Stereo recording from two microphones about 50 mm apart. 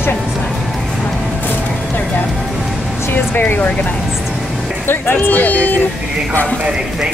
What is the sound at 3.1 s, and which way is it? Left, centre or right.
Speech, left.